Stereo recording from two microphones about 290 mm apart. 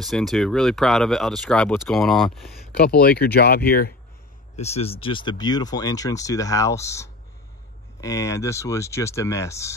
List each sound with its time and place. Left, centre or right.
0.0 s speech: centre
2.8 s speech: left
4.6 s speech: left